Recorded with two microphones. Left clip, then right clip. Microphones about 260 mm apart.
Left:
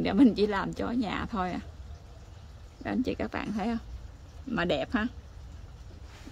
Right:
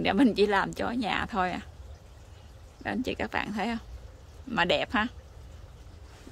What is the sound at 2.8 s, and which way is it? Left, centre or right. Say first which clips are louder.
Speech: even; centre.